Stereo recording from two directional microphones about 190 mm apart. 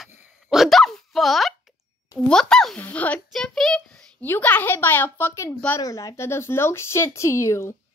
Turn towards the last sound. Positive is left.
turn(degrees=15)  # may be behind; listen again after turning